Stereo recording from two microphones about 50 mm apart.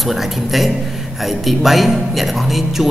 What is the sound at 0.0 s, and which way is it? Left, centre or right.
A man's voice, centre.